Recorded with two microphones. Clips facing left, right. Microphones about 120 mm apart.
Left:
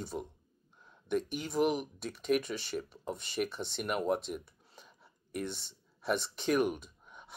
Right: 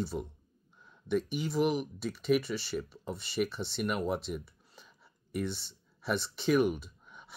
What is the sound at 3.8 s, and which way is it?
Speech, centre (ahead or behind).